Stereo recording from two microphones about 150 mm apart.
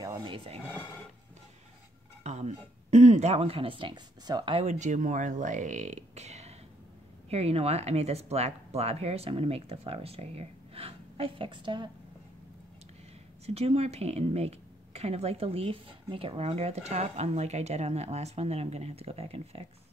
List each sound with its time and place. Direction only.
0.0 s dishes: 25° right (ahead or behind)
2.2 s speech: 50° right (ahead or behind); by 4.6 s 30° right (ahead or behind)
4.6 s speech: 50° right (ahead or behind); by 11.9 s 30° right (ahead or behind)
13.5 s speech: 45° right (ahead or behind)